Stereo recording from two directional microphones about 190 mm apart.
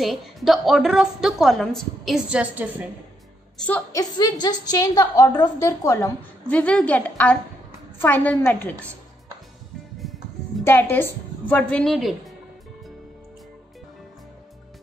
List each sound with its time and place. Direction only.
0.0 s a woman's voice: centre (ahead or behind)
3.5 s a woman's voice: 5° left (ahead or behind)
3.9 s a woman's voice: 20° left (ahead or behind)
10.0 s music: centre (ahead or behind)
10.6 s a woman's voice: 10° left (ahead or behind)